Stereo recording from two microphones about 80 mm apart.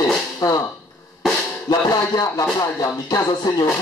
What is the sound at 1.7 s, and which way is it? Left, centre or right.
Music, left.